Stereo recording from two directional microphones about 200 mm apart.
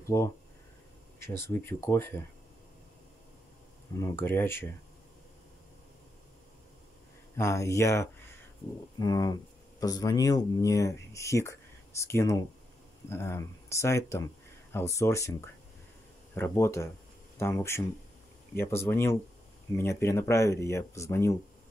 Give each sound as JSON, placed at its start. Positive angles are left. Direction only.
{"t": 0.1, "sound": "speech", "side_deg": 15}
{"t": 4.0, "sound": "speech", "side_deg": 10}
{"t": 7.3, "sound": "speech", "side_deg": 15}